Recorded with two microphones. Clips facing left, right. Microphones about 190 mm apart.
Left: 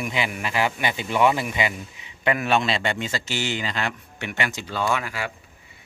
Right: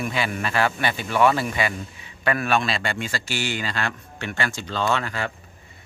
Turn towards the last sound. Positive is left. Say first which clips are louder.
# right 1 dB
turn(degrees=10)  # may be behind; listen again after turning